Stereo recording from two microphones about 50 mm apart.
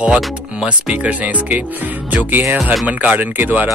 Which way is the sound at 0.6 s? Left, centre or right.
Right.